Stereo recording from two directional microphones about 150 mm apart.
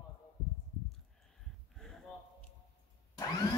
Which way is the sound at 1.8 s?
5° left (ahead or behind).